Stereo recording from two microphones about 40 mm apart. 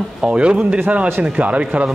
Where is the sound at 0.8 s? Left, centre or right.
Right.